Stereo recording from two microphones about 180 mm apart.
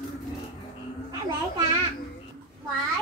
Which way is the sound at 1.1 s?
20° right (ahead or behind).